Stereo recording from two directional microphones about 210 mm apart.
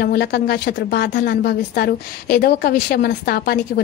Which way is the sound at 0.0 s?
50° left (ahead or behind).